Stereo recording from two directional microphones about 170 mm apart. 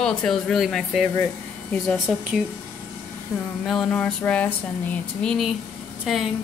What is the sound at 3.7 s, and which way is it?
A woman's voice, 5° left (ahead or behind).